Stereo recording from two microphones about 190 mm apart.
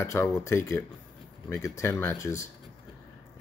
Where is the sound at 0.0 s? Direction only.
15° left (ahead or behind).